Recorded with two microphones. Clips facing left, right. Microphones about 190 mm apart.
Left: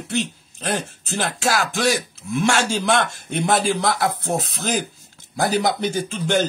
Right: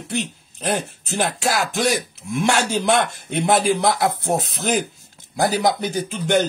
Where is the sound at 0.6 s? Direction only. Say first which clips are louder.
Right 2 dB; 20° right (ahead or behind).